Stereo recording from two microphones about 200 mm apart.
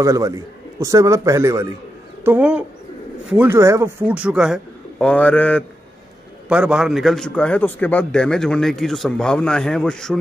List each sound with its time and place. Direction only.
0.0 s a man's voice: 15° right (ahead or behind); by 5.6 s 5° left (ahead or behind)
6.5 s a man's voice: 5° right (ahead or behind)